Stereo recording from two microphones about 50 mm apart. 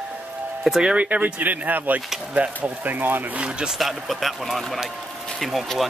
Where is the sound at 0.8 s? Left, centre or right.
Centre.